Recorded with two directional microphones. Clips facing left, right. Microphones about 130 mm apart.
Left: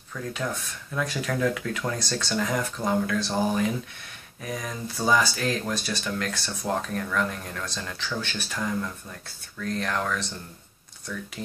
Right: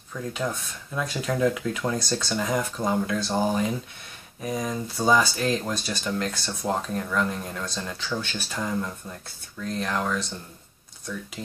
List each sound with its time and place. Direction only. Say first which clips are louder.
0.1 s speech: right 1 dB; 5° right (ahead or behind)
0.9 s speech: right 1 dB; 20° right (ahead or behind)